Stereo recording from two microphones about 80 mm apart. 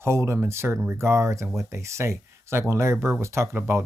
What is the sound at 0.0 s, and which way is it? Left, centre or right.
Speech, right.